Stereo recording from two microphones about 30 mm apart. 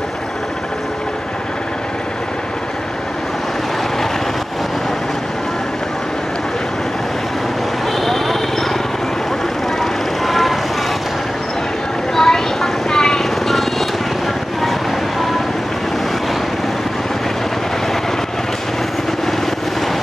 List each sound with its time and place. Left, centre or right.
8.0 s vehicle: centre
9.8 s vehicle: centre
12.2 s vehicle: centre
13.5 s helicopter: centre